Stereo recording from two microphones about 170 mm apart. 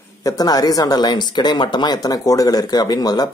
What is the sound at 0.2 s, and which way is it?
Speech, 20° left (ahead or behind).